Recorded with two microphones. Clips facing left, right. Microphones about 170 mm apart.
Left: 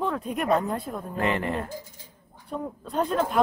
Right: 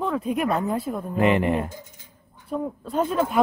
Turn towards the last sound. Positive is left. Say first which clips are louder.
# right 2 dB
turn(degrees=-5)  # may be behind; listen again after turning